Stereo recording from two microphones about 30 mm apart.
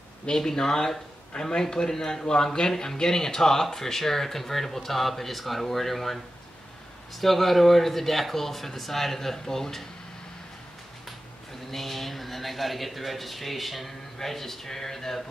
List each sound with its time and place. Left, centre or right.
0.3 s speech: centre
2.2 s speech: left
3.1 s speech: centre
7.2 s speech: centre
11.7 s a man's voice: centre